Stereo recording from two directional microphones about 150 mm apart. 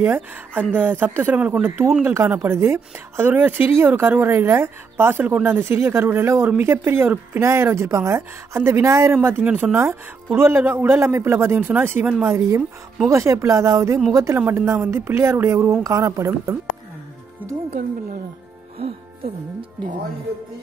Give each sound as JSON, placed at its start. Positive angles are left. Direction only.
{"t": 0.0, "sound": "speech", "side_deg": -15}